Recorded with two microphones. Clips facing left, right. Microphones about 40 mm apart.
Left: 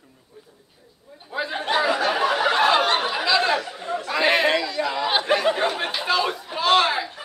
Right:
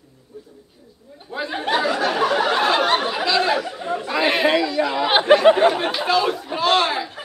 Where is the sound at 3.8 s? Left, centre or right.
Centre.